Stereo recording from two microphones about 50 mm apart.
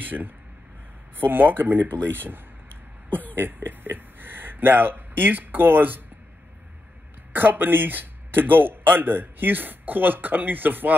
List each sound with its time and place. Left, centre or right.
0.0 s speech: right
7.3 s speech: right